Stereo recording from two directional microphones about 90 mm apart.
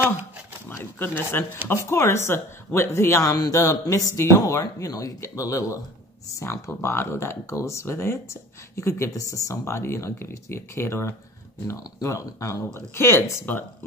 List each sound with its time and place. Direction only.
0.7 s speech: 20° left (ahead or behind)